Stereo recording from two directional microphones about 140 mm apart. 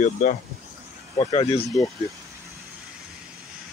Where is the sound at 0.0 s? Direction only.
60° left (ahead or behind).